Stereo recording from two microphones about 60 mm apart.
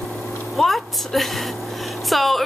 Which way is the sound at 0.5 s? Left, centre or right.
Centre.